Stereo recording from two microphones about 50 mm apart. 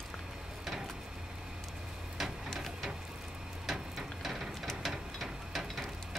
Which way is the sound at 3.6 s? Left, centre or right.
Centre.